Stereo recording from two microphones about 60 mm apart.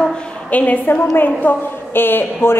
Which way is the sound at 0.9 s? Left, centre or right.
Left.